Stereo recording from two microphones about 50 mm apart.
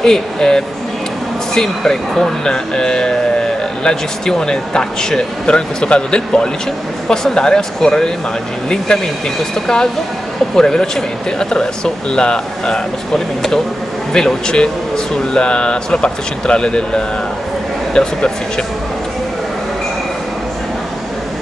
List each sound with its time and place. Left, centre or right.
0.0 s speech: centre
10.5 s speech: centre